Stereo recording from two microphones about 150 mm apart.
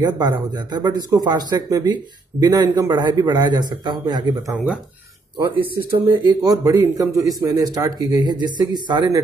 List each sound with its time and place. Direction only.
0.0 s a man's voice: 30° right (ahead or behind)
6.4 s a man's voice: 25° right (ahead or behind)